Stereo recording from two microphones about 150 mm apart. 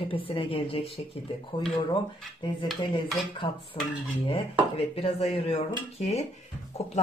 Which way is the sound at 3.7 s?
35° left (ahead or behind).